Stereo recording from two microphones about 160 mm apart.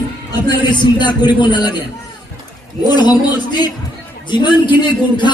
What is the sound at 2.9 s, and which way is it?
A man's voice, 25° left (ahead or behind).